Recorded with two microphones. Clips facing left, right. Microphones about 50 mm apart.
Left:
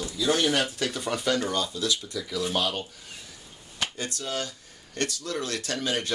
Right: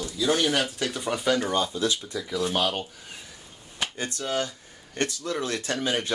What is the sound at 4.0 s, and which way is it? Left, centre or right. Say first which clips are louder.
Speech: right 6 dB; right.